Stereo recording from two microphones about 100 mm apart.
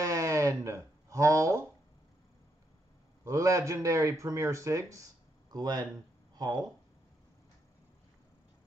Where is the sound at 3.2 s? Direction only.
30° right (ahead or behind).